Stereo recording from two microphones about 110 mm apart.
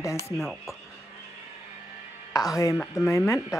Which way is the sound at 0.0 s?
25° left (ahead or behind).